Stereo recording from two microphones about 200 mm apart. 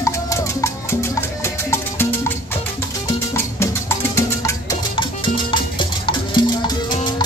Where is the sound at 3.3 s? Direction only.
15° left (ahead or behind).